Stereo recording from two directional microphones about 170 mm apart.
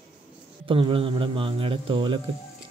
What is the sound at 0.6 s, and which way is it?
A man's voice, 30° right (ahead or behind).